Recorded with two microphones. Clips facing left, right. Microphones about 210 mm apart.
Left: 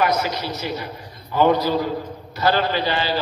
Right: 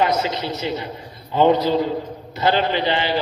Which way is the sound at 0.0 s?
25° right (ahead or behind).